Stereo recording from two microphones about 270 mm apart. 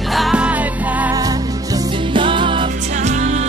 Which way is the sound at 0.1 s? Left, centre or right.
Centre.